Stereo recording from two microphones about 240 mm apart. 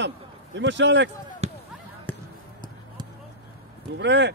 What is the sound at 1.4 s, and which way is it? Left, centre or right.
Basketball bounce, right.